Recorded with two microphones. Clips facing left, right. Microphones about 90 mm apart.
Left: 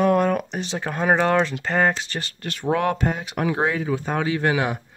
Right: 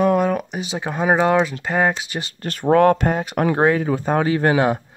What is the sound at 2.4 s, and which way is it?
Speech, 45° right (ahead or behind).